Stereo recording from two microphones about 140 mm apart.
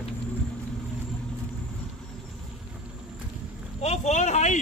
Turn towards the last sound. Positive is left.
turn(degrees=55)  # may be behind; listen again after turning